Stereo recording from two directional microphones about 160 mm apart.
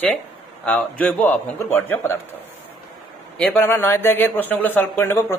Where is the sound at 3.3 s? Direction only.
5° left (ahead or behind).